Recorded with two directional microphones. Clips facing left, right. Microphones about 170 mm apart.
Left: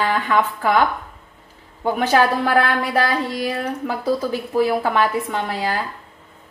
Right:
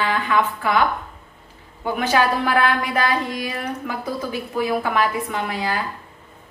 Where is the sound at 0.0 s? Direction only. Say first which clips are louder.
Left 1 dB; 40° left (ahead or behind).